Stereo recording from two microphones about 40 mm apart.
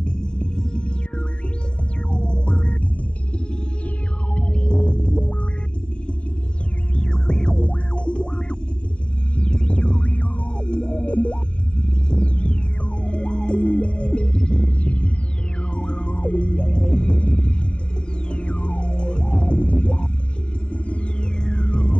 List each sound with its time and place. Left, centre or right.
0.0 s music: left
4.4 s sonar: left
7.0 s music: left